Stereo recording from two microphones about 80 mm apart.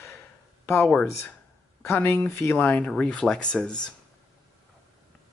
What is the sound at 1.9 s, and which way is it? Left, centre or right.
Speech, left.